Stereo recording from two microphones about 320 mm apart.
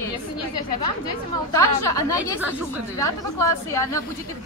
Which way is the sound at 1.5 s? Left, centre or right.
Centre.